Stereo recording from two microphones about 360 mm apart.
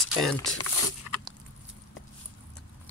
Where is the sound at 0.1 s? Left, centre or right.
Centre.